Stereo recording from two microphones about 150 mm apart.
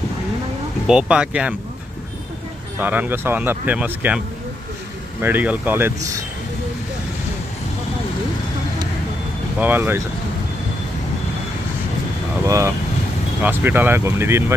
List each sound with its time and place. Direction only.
0.8 s speech: 5° right (ahead or behind)
2.8 s speech: 10° right (ahead or behind)
5.2 s speech: 10° right (ahead or behind)
9.6 s speech: 15° right (ahead or behind)
12.4 s speech: 20° right (ahead or behind)